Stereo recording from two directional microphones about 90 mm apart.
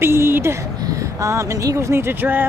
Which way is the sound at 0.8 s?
35° right (ahead or behind).